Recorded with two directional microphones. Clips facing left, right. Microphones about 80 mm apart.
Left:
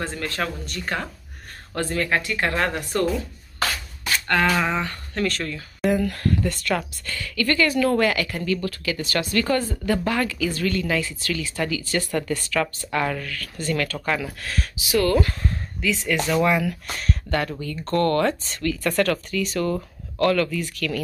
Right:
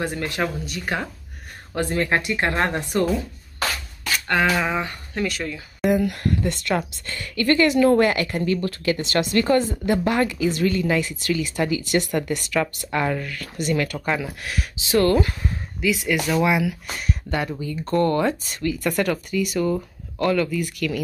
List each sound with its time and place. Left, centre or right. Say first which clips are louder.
0.0 s speech: right 3 dB; centre
4.3 s speech: even; centre
14.9 s speech: right 2 dB; right
15.1 s speech: even; centre